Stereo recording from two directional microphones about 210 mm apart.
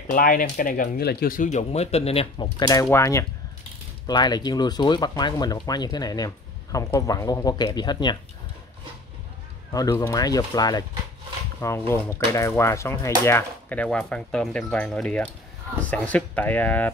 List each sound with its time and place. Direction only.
0.1 s speech: 40° left (ahead or behind); by 8.2 s 20° left (ahead or behind)
9.7 s speech: 15° left (ahead or behind)